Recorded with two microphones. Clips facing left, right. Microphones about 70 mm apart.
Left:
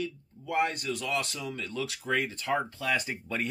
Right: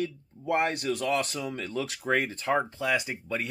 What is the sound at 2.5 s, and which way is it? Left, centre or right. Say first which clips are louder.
Speech: right 3 dB; centre.